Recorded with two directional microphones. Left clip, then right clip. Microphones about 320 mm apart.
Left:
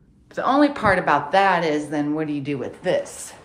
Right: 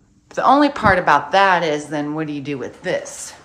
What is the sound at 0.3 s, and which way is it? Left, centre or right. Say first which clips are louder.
A woman's voice: right 5 dB; centre.